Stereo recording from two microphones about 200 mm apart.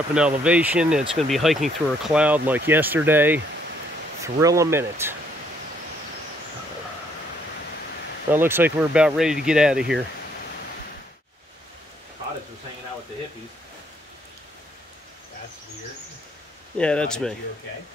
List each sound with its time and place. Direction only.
0.1 s speech: 5° right (ahead or behind)
8.3 s speech: 10° right (ahead or behind)
16.7 s speech: 5° left (ahead or behind)